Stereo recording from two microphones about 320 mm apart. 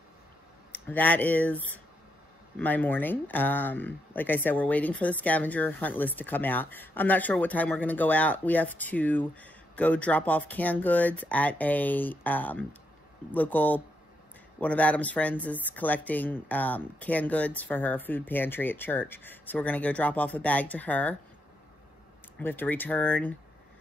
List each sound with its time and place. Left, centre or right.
0.7 s speech: centre
22.4 s speech: centre